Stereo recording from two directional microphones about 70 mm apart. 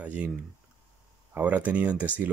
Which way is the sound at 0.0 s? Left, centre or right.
Centre.